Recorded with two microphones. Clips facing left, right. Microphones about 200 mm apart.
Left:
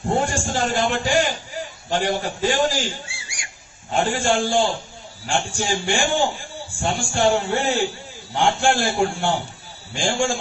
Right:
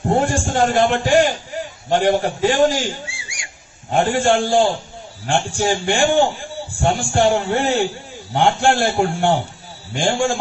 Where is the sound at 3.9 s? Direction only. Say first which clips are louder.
Right 4 dB; 50° right (ahead or behind).